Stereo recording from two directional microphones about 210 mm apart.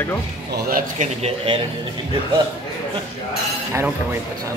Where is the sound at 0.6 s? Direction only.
40° right (ahead or behind).